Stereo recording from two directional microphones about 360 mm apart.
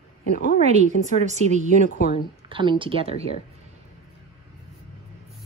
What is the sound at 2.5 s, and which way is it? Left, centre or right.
Speech, centre.